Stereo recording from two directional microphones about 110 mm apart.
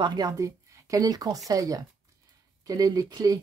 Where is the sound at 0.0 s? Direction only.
40° right (ahead or behind).